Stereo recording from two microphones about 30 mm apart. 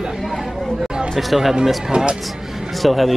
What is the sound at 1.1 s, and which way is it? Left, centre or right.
Speech, centre.